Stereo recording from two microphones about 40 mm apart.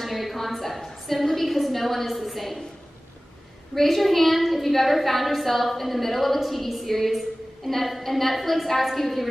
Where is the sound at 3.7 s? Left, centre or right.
Centre.